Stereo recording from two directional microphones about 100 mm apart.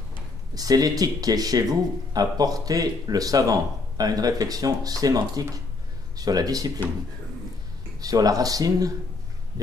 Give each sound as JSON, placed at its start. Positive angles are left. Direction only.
{"t": 0.6, "sound": "speech", "side_deg": -40}
{"t": 8.0, "sound": "speech", "side_deg": -40}